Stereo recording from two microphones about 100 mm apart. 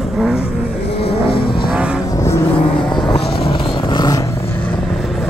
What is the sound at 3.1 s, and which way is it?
Vehicle, 65° left (ahead or behind).